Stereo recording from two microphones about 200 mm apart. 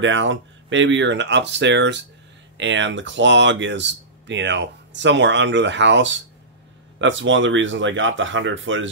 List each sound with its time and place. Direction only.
0.0 s speech: 70° right (ahead or behind)